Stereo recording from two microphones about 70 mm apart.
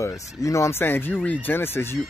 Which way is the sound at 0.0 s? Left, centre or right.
Left.